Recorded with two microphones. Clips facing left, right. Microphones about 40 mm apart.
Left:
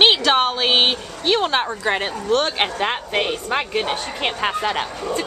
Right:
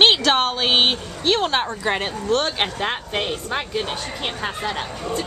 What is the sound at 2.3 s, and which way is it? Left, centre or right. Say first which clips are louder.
Speech: left 2 dB; centre.